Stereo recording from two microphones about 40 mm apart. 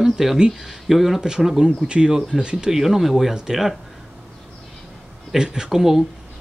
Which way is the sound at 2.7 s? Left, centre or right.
Centre.